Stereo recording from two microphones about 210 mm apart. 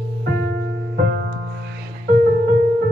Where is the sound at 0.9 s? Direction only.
50° right (ahead or behind).